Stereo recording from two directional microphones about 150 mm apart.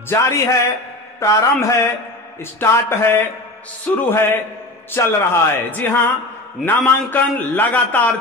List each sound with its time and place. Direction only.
0.1 s mantra: 20° left (ahead or behind)
2.6 s a man's voice: 15° left (ahead or behind)